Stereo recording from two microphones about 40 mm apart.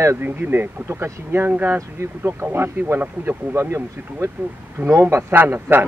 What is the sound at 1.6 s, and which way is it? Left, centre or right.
Speech, right.